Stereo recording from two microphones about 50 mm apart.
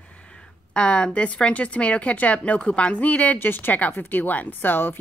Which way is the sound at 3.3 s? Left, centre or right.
Left.